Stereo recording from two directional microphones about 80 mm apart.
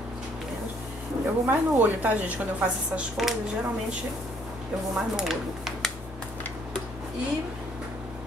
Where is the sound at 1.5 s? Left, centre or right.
Centre.